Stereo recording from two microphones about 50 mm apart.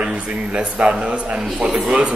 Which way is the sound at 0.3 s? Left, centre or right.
Right.